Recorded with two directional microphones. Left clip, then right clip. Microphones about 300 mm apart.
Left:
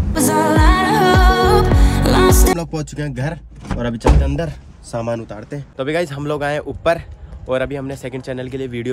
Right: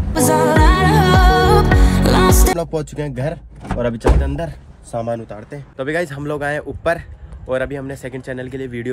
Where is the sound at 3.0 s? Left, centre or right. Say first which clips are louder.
Right 2 dB; centre.